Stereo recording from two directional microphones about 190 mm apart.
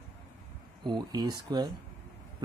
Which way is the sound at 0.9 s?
20° right (ahead or behind).